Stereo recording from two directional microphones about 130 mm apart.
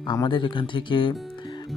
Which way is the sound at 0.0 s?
35° left (ahead or behind).